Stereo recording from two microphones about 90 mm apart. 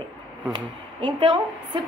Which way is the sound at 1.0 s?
60° right (ahead or behind).